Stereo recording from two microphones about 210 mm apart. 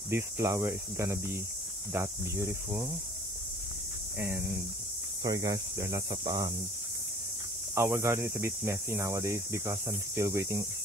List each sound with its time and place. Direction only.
0.1 s speech: 15° right (ahead or behind)
5.2 s speech: 15° right (ahead or behind)
7.7 s speech: 10° right (ahead or behind)